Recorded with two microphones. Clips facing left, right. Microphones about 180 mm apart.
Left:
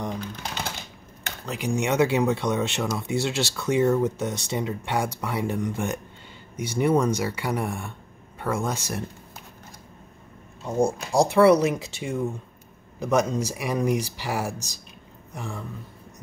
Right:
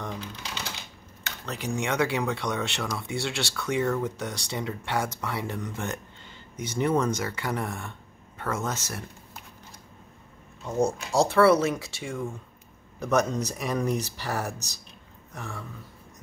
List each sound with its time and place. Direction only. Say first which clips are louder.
0.2 s typewriter: left 5 dB; 50° left (ahead or behind)
1.4 s speech: left 4 dB; 10° left (ahead or behind)
10.6 s speech: left 2 dB; 10° left (ahead or behind)